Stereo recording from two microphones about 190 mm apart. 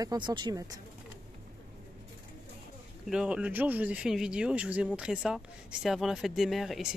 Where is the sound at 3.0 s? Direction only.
5° right (ahead or behind).